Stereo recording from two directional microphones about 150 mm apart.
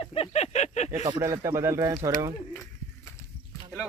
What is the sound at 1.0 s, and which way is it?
Speech, 20° right (ahead or behind).